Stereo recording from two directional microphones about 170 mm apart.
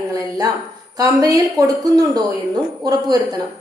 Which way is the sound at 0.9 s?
20° right (ahead or behind).